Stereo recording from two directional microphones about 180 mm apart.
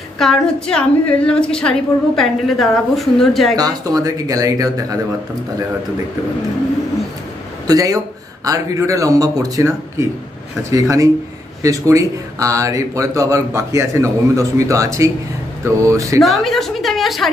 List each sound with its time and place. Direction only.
0.2 s a woman's voice: 5° left (ahead or behind)
3.5 s speech: 20° right (ahead or behind)
7.6 s speech: 20° right (ahead or behind)
16.2 s a woman's voice: centre (ahead or behind)